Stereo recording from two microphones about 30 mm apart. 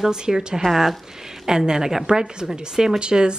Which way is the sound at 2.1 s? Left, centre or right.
Right.